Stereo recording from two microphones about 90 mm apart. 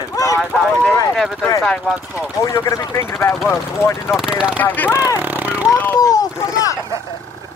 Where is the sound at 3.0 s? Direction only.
30° left (ahead or behind).